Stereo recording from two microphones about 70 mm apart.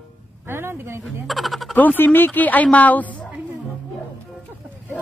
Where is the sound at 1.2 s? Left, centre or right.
Centre.